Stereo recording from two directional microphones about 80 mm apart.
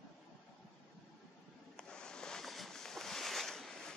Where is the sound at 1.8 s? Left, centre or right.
Centre.